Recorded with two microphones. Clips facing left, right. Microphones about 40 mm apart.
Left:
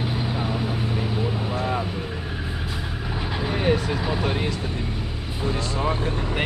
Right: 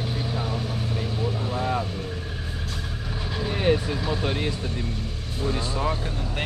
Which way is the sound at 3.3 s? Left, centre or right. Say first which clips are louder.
Even; centre.